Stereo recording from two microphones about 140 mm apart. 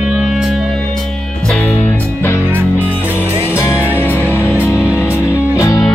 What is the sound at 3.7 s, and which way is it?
Music, 10° right (ahead or behind).